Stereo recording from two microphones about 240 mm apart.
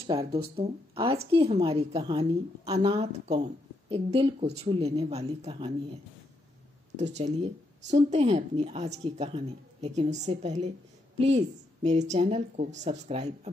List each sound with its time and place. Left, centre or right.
0.0 s speech: right
7.9 s speech: right